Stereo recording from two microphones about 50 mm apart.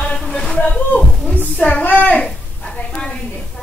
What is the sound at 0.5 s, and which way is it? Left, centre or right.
A woman's voice, left.